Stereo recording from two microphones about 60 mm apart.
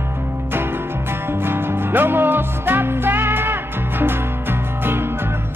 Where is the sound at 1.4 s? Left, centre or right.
Right.